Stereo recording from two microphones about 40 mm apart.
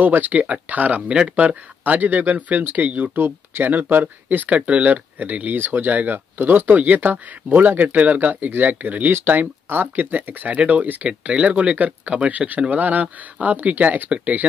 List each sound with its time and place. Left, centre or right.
0.0 s speech: right
1.0 s speech: right
1.3 s speech: right
3.2 s speech: right
4.0 s speech: right
4.6 s speech: right
5.6 s speech: right
5.9 s speech: right
10.5 s speech: right